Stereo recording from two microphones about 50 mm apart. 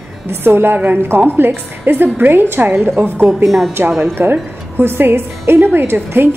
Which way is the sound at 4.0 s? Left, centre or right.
Right.